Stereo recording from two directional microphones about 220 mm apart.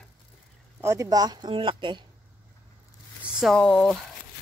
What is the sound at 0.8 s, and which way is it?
Speech, 15° right (ahead or behind).